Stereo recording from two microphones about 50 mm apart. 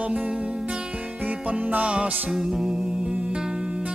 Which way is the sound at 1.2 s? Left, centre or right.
Right.